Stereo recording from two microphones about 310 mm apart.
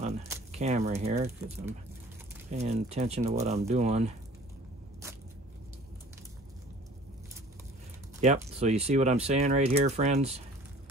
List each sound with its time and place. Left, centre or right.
0.0 s speech: right
8.2 s speech: right